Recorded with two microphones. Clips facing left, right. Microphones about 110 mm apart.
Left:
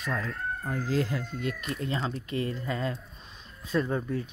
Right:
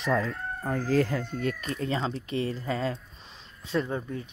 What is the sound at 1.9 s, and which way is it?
Speech, 30° right (ahead or behind).